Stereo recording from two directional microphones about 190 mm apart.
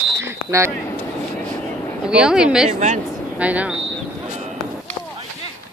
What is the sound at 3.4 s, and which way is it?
Speech, 5° right (ahead or behind).